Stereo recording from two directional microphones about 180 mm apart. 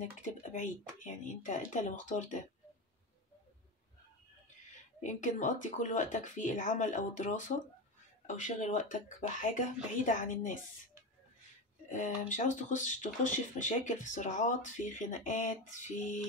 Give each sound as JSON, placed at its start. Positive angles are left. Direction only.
{"t": 0.0, "sound": "speech", "side_deg": 45}
{"t": 5.0, "sound": "speech", "side_deg": 45}
{"t": 11.9, "sound": "speech", "side_deg": 45}